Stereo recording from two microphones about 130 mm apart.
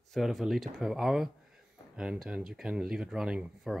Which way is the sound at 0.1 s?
Centre (ahead or behind).